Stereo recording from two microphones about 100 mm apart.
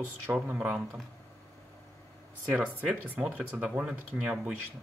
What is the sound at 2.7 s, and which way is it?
Speech, 15° right (ahead or behind).